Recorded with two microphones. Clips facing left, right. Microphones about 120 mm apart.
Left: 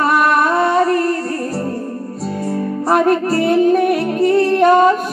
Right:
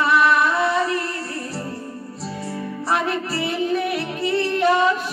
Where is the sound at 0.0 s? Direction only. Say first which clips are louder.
Left 3 dB; 50° left (ahead or behind).